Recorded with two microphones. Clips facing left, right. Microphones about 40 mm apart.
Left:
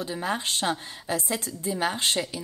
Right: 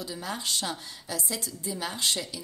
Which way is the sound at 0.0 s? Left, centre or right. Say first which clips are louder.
Left 6 dB; left.